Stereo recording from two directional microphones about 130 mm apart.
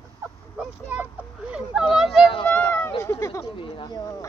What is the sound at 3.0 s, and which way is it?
Speech, 20° left (ahead or behind).